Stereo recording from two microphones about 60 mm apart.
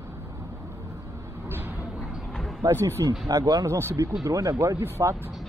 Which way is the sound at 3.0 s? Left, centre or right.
Right.